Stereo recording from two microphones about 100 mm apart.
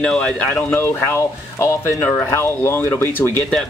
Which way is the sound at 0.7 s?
20° left (ahead or behind).